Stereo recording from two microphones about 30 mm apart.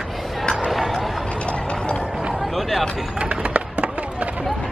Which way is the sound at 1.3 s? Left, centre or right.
Left.